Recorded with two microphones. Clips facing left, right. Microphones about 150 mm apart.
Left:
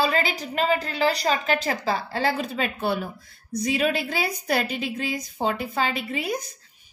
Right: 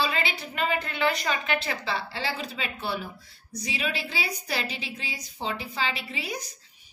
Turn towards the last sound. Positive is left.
turn(degrees=55)  # may be behind; listen again after turning